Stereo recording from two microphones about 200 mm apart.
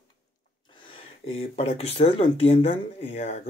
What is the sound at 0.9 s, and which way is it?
Speech, 30° left (ahead or behind).